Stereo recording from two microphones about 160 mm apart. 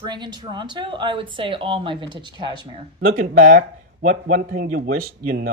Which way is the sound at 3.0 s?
65° right (ahead or behind).